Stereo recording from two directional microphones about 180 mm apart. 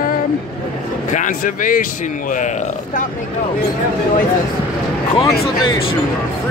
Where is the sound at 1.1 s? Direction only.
45° left (ahead or behind).